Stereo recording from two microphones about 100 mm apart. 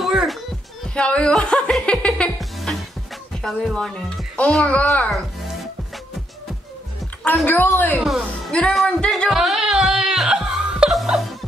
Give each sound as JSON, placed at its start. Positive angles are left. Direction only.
{"t": 0.0, "sound": "music", "side_deg": -5}
{"t": 0.9, "sound": "speech", "side_deg": 10}
{"t": 5.1, "sound": "music", "side_deg": 0}
{"t": 7.4, "sound": "a woman's voice", "side_deg": 20}
{"t": 8.2, "sound": "speech", "side_deg": 10}
{"t": 9.3, "sound": "music", "side_deg": -5}